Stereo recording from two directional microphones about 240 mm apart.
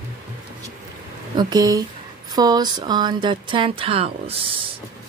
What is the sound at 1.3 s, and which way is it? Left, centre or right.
Speech, centre.